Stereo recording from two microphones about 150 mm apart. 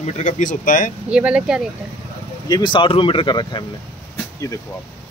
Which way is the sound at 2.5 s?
30° left (ahead or behind).